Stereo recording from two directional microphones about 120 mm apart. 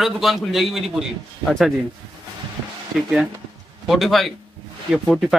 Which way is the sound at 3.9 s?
Centre (ahead or behind).